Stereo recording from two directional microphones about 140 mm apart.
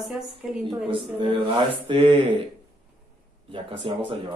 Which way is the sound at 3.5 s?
40° right (ahead or behind).